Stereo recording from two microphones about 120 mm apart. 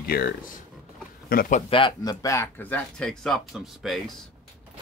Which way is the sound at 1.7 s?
45° left (ahead or behind).